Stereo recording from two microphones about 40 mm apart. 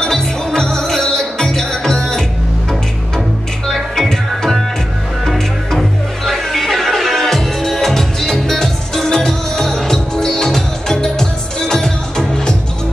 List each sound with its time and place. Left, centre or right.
0.0 s music: centre
3.6 s music: centre
5.7 s music: centre